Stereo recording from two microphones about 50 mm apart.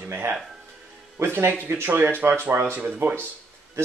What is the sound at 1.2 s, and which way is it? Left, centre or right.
Speech, right.